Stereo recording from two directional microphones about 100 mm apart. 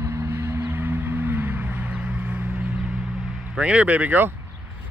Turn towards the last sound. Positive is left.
turn(degrees=-20)  # may be behind; listen again after turning